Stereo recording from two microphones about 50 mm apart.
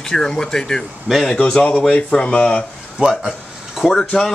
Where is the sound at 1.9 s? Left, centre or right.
Centre.